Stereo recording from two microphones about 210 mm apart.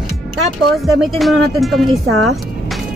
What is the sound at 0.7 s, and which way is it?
A woman's voice, centre (ahead or behind).